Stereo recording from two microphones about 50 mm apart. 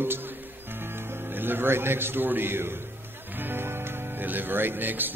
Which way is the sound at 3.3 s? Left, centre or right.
Right.